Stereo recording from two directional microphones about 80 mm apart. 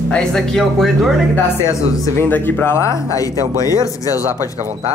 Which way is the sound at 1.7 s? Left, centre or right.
Left.